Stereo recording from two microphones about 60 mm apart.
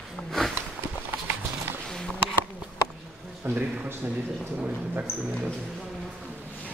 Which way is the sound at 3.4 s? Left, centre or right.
Right.